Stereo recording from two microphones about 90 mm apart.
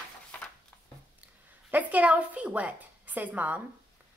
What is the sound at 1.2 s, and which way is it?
A woman's voice, 20° right (ahead or behind).